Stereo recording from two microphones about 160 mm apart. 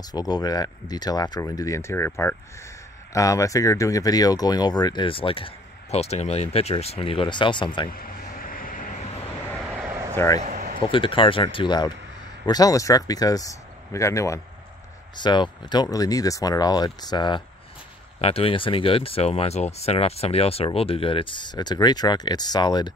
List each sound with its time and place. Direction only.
0.0 s speech: 25° left (ahead or behind)
7.9 s vehicle: 65° left (ahead or behind)
10.1 s speech: 20° left (ahead or behind)
10.4 s a sound: 50° right (ahead or behind)
10.8 s speech: 30° left (ahead or behind)
18.2 s speech: 35° left (ahead or behind)